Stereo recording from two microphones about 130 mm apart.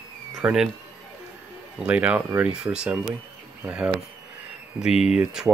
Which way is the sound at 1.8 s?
10° right (ahead or behind).